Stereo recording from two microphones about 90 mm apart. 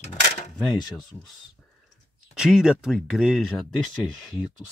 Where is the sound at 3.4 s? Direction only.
5° left (ahead or behind).